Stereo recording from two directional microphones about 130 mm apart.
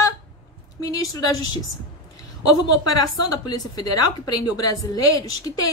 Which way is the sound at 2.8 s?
30° left (ahead or behind).